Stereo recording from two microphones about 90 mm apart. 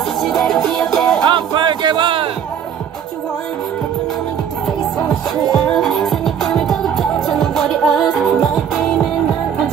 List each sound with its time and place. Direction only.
0.2 s music: centre (ahead or behind)
1.2 s speech: 60° right (ahead or behind)
5.7 s music: centre (ahead or behind)